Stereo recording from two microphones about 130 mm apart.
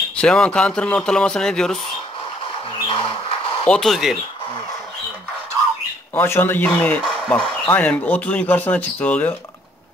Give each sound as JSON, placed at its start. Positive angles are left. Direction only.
{"t": 0.1, "sound": "speech", "side_deg": 10}
{"t": 2.9, "sound": "a sound", "side_deg": 45}
{"t": 3.7, "sound": "speech", "side_deg": 0}
{"t": 6.1, "sound": "speech", "side_deg": 20}